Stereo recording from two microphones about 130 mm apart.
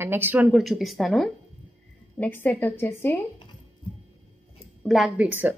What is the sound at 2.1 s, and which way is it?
A woman's voice, 15° left (ahead or behind).